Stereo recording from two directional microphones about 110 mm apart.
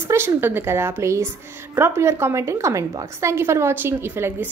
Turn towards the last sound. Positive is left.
turn(degrees=-20)  # may be behind; listen again after turning